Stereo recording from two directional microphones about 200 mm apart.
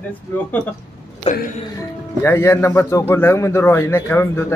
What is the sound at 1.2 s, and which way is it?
Speech, 30° left (ahead or behind).